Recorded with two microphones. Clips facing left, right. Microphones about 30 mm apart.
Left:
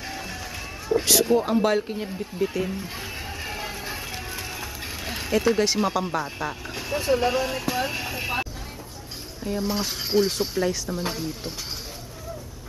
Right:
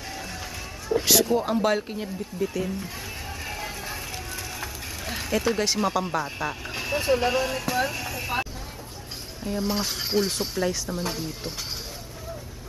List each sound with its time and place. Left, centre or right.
0.1 s music: centre
1.3 s speech: centre
2.3 s music: centre
4.6 s speech: centre
7.9 s speech: centre
9.4 s speech: centre